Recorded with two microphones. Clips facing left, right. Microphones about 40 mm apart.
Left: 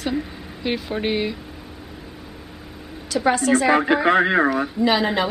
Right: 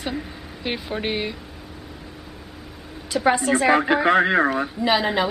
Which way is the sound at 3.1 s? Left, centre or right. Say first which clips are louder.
Left 1 dB; centre.